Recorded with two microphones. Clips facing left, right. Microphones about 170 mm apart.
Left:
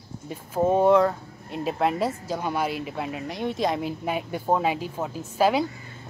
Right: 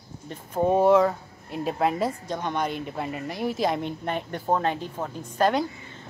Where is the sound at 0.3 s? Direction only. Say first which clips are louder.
Even; centre (ahead or behind).